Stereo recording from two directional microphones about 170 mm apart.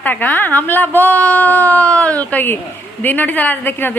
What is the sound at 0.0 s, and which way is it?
A woman's voice, 10° left (ahead or behind).